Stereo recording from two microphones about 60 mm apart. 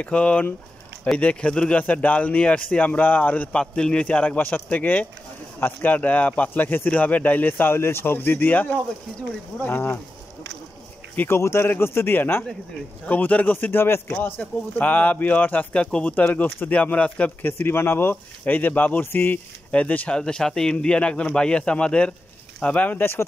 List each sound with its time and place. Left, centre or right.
0.0 s speech: centre; by 9.9 s left
11.2 s speech: left
13.0 s speech: left
14.2 s speech: left
15.8 s speech: centre
17.5 s speech: left
18.1 s speech: left
20.2 s speech: centre; by 23.2 s left